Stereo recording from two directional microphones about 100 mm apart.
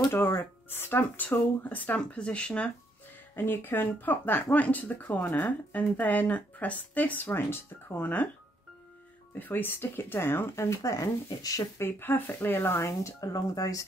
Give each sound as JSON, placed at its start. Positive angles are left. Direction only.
{"t": 0.1, "sound": "speech", "side_deg": 25}
{"t": 3.3, "sound": "speech", "side_deg": 20}
{"t": 9.4, "sound": "speech", "side_deg": 20}
{"t": 11.8, "sound": "speech", "side_deg": 20}